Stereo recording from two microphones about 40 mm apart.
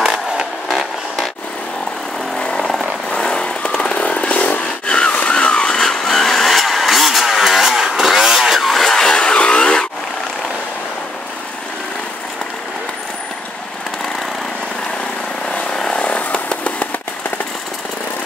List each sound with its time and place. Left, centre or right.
0.7 s vehicle: centre
3.2 s vehicle: centre
5.9 s vehicle: centre
8.9 s vehicle: centre
15.9 s chainsaw: left